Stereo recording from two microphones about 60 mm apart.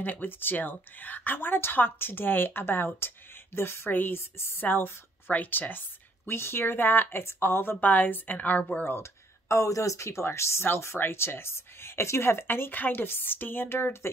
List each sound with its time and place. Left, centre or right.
0.0 s speech: left
6.2 s speech: left
7.7 s a woman's voice: left
8.8 s speech: left